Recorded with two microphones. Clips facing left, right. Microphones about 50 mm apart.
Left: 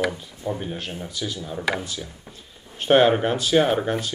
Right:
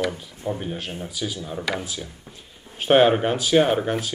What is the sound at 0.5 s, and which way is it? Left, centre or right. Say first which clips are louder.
Speech: right 1 dB; centre.